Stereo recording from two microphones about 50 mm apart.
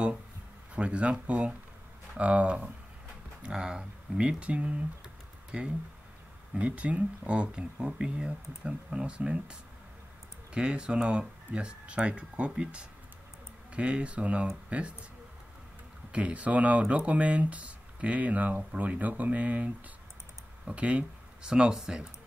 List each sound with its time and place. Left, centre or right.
0.7 s speech: right
6.5 s speech: right
16.1 s speech: right